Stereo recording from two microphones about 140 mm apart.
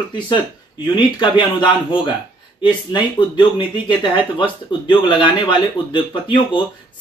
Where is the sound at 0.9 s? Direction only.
35° left (ahead or behind).